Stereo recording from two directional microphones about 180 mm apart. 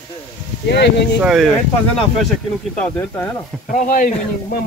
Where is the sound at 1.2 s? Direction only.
Centre (ahead or behind).